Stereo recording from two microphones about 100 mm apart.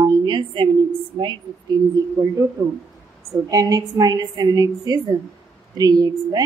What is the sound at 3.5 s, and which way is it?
A woman's voice, 40° right (ahead or behind).